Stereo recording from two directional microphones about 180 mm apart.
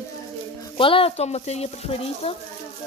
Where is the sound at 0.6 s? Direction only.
30° left (ahead or behind).